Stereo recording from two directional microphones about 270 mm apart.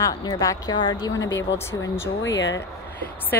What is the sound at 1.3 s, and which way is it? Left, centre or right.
Speech, left.